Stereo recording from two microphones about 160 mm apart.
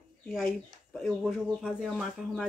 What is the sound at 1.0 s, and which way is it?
Speech, centre (ahead or behind).